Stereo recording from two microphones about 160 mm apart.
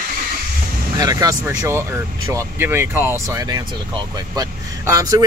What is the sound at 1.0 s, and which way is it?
Speech, 25° right (ahead or behind).